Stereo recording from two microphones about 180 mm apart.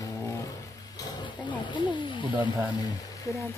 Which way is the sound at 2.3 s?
10° right (ahead or behind).